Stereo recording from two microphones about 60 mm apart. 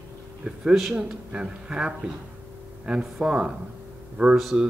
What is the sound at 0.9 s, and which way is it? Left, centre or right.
Speech, centre.